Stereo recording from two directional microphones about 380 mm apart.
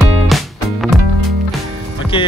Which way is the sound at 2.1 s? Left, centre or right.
Centre.